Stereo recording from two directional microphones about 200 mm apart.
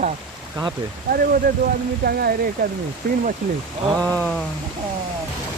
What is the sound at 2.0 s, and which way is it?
Speech, 50° right (ahead or behind).